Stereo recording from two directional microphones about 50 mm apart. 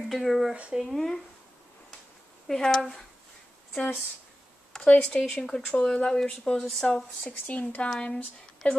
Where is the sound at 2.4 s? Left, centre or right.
Centre.